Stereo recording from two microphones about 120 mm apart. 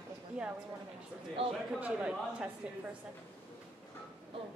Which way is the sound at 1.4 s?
50° right (ahead or behind).